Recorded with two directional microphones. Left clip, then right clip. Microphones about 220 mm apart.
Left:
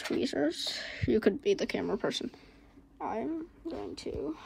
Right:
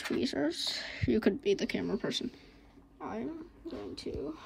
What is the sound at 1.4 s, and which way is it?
Speech, 15° left (ahead or behind).